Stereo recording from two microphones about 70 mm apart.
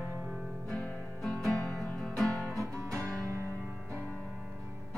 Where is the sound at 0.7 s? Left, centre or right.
Centre.